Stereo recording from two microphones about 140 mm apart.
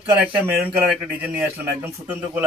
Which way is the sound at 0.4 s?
10° right (ahead or behind).